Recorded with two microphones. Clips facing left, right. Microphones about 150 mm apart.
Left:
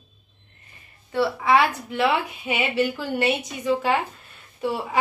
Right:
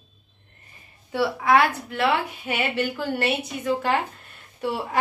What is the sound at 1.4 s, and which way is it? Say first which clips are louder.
Speech: right 1 dB; centre (ahead or behind).